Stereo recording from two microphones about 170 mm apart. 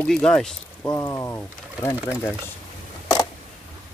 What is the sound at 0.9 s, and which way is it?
Speech, 20° left (ahead or behind).